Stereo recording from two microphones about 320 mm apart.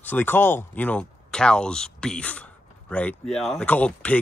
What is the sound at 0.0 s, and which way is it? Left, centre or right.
Speech, centre.